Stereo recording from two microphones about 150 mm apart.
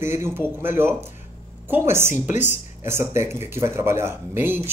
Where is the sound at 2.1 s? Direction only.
55° left (ahead or behind).